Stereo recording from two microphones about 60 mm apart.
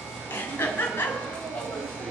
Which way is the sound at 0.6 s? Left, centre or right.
Left.